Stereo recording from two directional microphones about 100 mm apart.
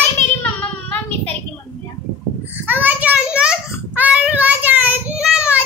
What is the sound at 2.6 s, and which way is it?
Child singing, 20° right (ahead or behind).